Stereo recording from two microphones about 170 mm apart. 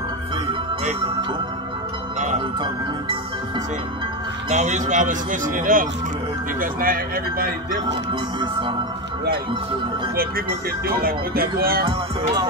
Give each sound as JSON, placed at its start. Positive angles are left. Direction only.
{"t": 4.5, "sound": "speech", "side_deg": -45}
{"t": 8.1, "sound": "music", "side_deg": -25}
{"t": 10.9, "sound": "speech", "side_deg": -60}